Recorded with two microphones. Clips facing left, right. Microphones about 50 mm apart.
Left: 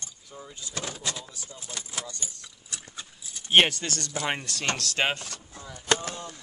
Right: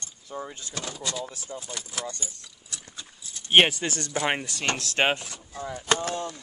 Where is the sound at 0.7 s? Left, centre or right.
Right.